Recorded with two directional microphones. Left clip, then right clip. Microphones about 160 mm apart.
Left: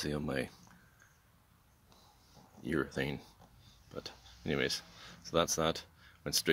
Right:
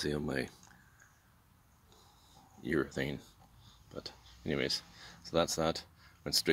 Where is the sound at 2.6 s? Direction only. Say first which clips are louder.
Right 1 dB; 10° left (ahead or behind).